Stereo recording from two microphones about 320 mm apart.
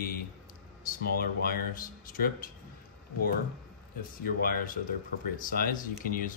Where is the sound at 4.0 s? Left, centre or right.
Left.